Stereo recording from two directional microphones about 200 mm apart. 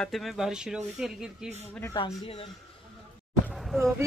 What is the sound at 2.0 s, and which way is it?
Speech, 25° left (ahead or behind).